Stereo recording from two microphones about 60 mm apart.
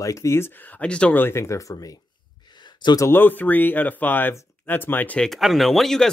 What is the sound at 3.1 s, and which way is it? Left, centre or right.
Speech, left.